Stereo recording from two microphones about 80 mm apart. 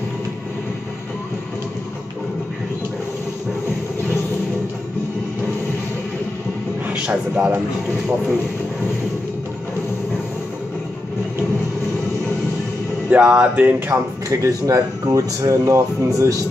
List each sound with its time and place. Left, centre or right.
6.9 s a man's voice: centre
13.1 s a sound: centre
14.3 s speech: right